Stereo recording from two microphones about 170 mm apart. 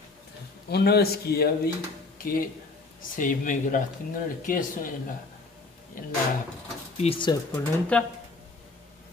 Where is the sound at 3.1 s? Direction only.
50° left (ahead or behind).